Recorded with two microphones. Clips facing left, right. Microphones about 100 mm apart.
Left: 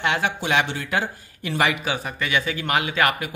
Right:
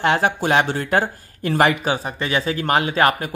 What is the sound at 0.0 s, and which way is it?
Speech, 40° right (ahead or behind).